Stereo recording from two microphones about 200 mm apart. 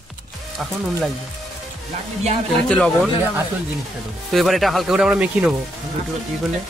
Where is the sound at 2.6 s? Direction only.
5° left (ahead or behind).